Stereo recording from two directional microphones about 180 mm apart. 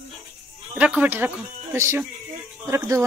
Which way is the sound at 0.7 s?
10° right (ahead or behind).